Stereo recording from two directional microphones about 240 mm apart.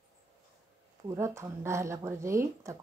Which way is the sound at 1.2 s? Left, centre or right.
Centre.